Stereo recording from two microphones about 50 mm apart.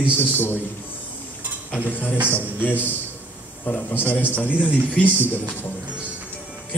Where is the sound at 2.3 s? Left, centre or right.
Left.